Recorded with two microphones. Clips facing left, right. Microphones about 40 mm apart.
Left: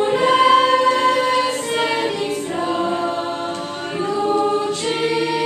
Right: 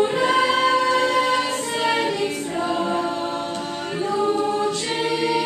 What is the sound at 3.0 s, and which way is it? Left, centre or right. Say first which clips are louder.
Music: left 3 dB; left.